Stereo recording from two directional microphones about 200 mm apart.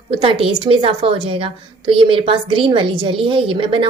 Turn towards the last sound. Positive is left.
turn(degrees=-25)  # may be behind; listen again after turning